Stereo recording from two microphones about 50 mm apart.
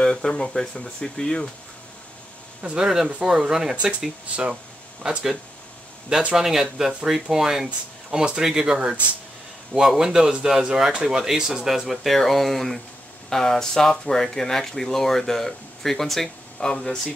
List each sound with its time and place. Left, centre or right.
0.0 s speech: centre
2.8 s speech: centre
5.0 s speech: centre
6.3 s speech: centre
9.8 s speech: centre